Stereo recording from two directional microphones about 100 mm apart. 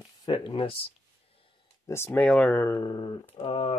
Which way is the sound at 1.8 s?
25° left (ahead or behind).